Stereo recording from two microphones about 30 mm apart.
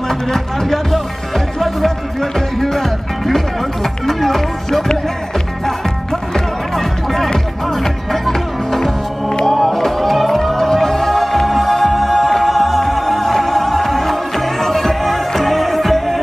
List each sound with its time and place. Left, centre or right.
0.1 s speech: centre
6.3 s music: centre